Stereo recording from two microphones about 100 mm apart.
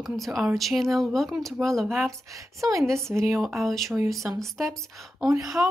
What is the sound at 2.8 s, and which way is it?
A woman's voice, 5° left (ahead or behind).